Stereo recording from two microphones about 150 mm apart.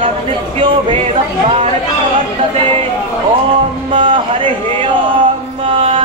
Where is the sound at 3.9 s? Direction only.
35° right (ahead or behind).